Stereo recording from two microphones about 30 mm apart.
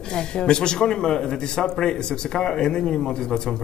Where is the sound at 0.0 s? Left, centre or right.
Left.